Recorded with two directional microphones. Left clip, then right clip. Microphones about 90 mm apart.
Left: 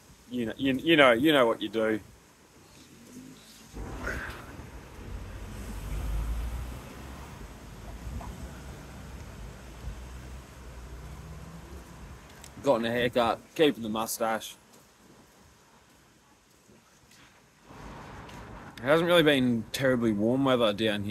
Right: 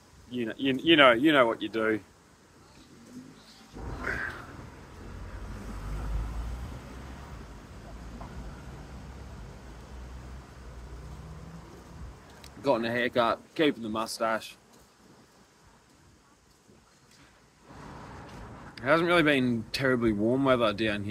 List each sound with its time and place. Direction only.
0.3 s speech: 40° left (ahead or behind)
3.8 s a sound: 5° right (ahead or behind)
12.4 s speech: 35° left (ahead or behind)
18.8 s speech: 40° left (ahead or behind)